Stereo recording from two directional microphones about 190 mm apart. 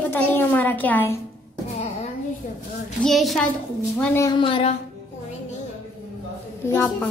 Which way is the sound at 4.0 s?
15° left (ahead or behind).